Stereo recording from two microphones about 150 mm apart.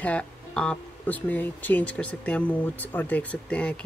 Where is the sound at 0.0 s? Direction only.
10° left (ahead or behind).